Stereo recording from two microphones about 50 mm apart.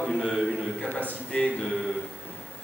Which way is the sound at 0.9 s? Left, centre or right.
Left.